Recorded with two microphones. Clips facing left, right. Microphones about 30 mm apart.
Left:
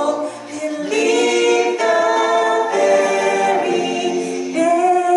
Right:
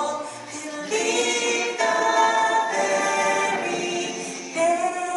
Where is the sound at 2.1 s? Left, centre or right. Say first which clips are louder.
Left 3 dB; left.